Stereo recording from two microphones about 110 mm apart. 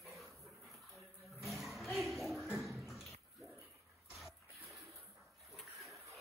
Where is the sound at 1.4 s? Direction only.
Centre (ahead or behind).